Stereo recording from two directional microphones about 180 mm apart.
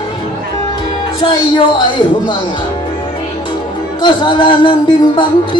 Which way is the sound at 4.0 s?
25° left (ahead or behind).